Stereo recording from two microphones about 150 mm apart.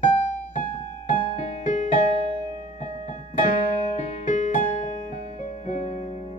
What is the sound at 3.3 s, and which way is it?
Music, 60° left (ahead or behind).